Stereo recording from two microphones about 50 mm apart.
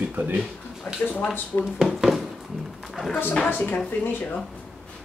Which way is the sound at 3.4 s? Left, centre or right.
Left.